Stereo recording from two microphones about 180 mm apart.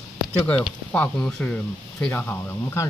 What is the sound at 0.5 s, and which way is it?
Speech, 5° left (ahead or behind).